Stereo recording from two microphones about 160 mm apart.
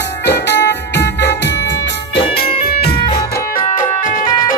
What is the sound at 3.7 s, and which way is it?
Music, 55° left (ahead or behind).